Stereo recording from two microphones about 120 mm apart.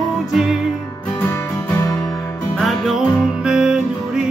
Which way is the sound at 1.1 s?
15° left (ahead or behind).